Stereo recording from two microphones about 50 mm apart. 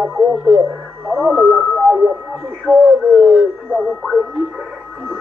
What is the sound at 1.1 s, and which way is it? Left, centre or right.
Speech, centre.